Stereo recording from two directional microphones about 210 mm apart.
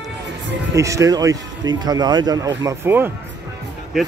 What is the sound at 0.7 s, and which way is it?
Speech, 15° right (ahead or behind).